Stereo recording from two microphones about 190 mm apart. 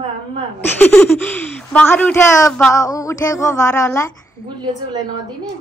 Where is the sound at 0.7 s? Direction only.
10° left (ahead or behind).